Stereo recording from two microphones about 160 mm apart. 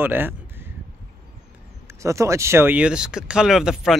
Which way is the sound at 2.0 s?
20° right (ahead or behind).